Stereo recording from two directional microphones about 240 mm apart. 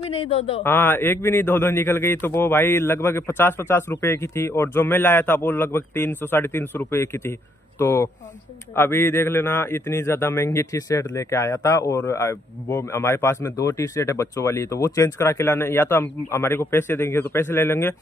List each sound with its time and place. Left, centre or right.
0.1 s speech: left
0.7 s a man's voice: centre